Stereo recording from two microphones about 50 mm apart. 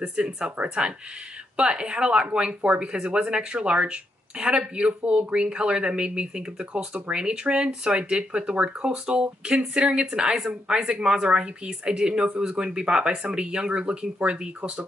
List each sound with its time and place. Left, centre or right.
0.0 s speech: right